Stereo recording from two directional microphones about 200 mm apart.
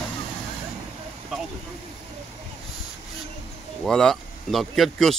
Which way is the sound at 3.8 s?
5° left (ahead or behind).